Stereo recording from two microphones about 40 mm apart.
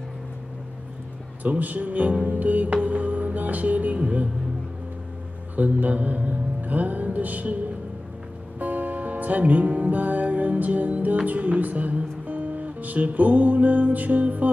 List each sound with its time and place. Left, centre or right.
1.4 s speech: right
2.2 s music: right
5.6 s music: right